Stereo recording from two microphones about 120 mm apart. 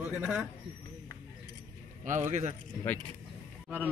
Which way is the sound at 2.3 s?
70° right (ahead or behind).